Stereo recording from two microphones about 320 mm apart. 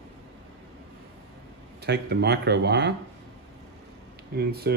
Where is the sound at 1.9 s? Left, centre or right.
Right.